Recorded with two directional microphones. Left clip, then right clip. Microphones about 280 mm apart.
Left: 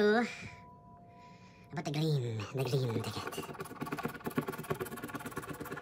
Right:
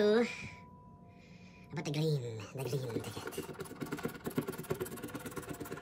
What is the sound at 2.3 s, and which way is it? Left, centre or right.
Vehicle, centre.